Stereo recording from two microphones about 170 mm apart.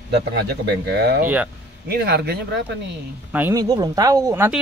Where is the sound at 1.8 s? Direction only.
75° right (ahead or behind).